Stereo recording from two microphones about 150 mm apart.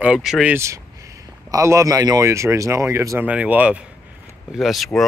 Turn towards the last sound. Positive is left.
turn(degrees=0)  # may be behind; listen again after turning